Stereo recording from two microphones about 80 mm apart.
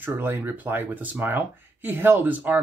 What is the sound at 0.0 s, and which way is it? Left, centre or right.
Speech, right.